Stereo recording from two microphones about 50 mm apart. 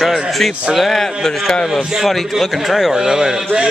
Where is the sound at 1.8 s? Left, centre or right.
Centre.